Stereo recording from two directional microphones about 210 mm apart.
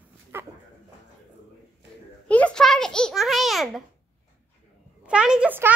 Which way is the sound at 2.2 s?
5° left (ahead or behind).